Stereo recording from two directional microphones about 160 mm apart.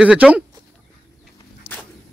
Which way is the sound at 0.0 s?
5° right (ahead or behind).